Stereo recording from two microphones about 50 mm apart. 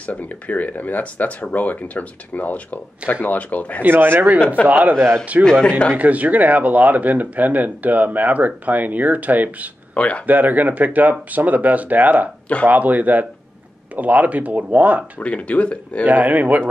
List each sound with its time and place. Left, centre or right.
0.0 s speech: left
3.8 s speech: right
5.4 s speech: centre
5.9 s speech: right
9.9 s speech: left
10.2 s speech: right
15.1 s speech: left
16.1 s speech: right